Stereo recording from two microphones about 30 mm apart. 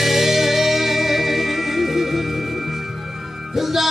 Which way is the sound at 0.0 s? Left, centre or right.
Centre.